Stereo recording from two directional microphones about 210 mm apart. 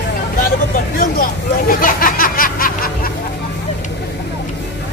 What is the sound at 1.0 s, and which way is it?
Speech, 40° left (ahead or behind).